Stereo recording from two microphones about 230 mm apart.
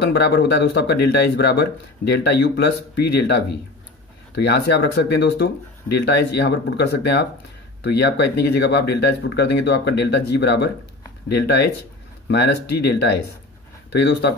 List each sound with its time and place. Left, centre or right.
0.0 s speech: left